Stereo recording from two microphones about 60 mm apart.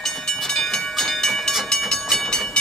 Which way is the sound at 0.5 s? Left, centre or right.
Centre.